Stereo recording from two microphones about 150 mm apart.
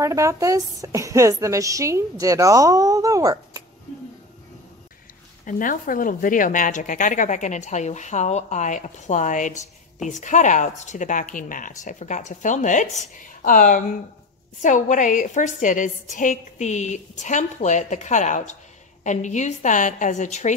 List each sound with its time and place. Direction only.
0.0 s a woman's voice: 20° right (ahead or behind)
5.4 s speech: 65° left (ahead or behind)